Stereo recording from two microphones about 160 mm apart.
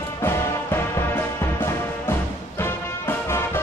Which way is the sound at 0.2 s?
15° left (ahead or behind).